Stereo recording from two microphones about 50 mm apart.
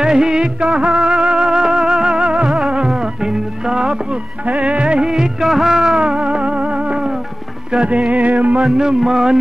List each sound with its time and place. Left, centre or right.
0.0 s music of bollywood: centre
2.9 s music: centre
4.5 s music of bollywood: right
8.1 s music: right
8.7 s music: centre